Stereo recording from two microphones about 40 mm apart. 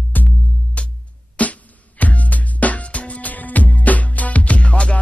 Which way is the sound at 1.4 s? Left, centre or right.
Left.